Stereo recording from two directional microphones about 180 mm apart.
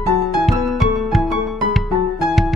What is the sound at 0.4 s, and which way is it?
Music, centre (ahead or behind).